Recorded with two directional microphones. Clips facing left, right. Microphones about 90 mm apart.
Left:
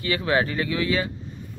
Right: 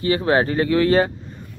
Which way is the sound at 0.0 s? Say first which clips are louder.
Right 5 dB; 35° right (ahead or behind).